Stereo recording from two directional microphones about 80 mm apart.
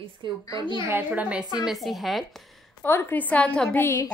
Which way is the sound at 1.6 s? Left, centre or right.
Centre.